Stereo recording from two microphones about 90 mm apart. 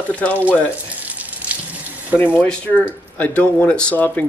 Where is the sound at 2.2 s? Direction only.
25° left (ahead or behind).